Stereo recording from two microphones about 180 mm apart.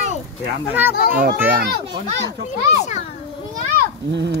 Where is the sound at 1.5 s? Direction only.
60° right (ahead or behind).